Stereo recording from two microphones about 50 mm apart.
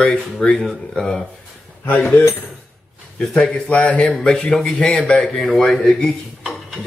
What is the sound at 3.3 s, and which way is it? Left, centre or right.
Speech, centre.